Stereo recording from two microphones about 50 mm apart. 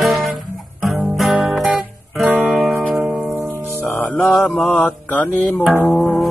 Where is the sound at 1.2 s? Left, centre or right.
Centre.